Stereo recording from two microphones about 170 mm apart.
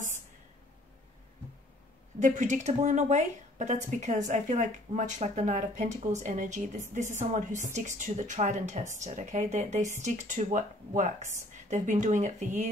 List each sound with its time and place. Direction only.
2.1 s speech: 45° right (ahead or behind)